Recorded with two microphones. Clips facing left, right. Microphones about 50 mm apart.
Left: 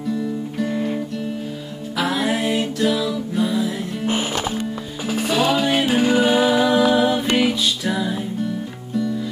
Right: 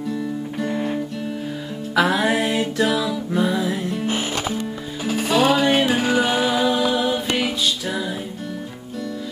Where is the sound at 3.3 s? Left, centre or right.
Right.